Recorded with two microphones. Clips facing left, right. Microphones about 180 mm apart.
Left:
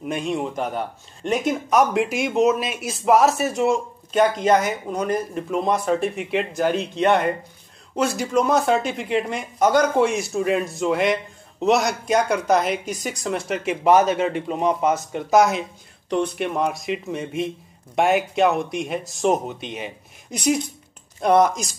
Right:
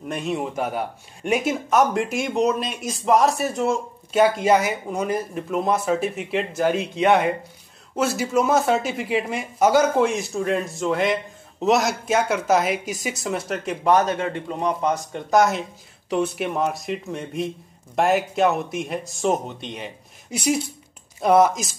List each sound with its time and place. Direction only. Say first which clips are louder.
0.0 s speech: left 1 dB; centre (ahead or behind)
14.0 s a man's voice: left 3 dB; 15° left (ahead or behind)
14.8 s speech: left 2 dB; 5° left (ahead or behind)
20.2 s speech: left 1 dB; 5° right (ahead or behind)